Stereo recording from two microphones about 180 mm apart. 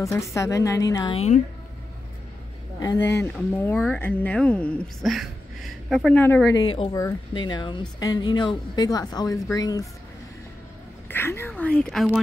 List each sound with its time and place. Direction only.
0.0 s speech: 15° left (ahead or behind)
1.1 s speech: 40° left (ahead or behind)
2.8 s speech: 15° left (ahead or behind)
6.5 s speech: 30° left (ahead or behind)
11.1 s speech: 10° left (ahead or behind)